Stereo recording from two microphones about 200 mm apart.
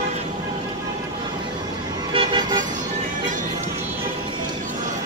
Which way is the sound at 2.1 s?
25° right (ahead or behind).